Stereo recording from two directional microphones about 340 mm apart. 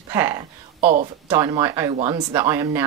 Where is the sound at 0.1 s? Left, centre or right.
Centre.